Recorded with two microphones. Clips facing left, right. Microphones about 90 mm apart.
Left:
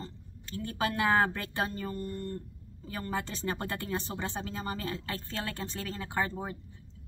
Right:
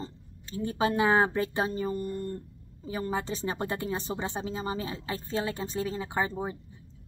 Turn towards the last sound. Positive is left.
turn(degrees=-15)  # may be behind; listen again after turning